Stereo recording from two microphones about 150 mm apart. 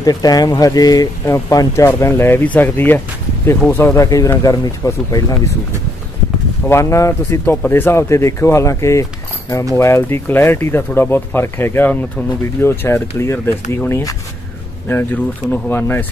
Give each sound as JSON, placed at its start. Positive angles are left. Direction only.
{"t": 0.0, "sound": "speech", "side_deg": 25}
{"t": 6.7, "sound": "speech", "side_deg": 20}